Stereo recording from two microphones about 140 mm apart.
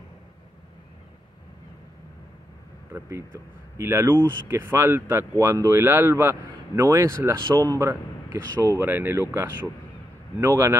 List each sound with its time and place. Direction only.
2.9 s speech: 20° right (ahead or behind)